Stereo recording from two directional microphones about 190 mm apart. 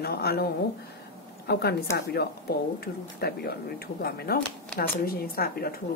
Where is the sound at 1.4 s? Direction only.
55° left (ahead or behind).